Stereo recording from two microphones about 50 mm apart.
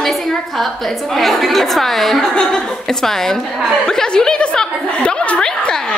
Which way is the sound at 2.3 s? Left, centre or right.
Centre.